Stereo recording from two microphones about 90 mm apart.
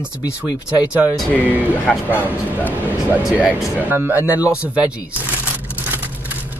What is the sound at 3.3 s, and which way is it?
Speech, 15° right (ahead or behind).